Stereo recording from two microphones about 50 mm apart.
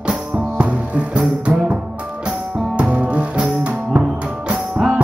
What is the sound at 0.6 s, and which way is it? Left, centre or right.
Music, right.